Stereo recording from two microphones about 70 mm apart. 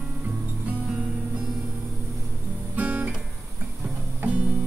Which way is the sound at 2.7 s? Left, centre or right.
Right.